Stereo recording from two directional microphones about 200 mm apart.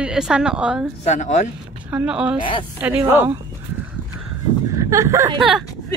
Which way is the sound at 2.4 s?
25° left (ahead or behind).